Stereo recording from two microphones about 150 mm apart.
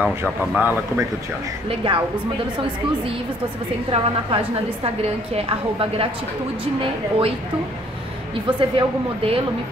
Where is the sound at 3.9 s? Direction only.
45° right (ahead or behind).